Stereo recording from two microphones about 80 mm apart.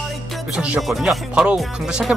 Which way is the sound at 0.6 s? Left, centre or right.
Centre.